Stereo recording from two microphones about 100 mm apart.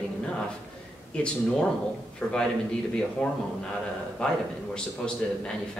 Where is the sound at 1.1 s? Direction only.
10° left (ahead or behind).